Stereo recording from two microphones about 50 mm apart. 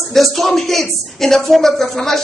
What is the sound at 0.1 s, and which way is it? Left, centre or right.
Speech, centre.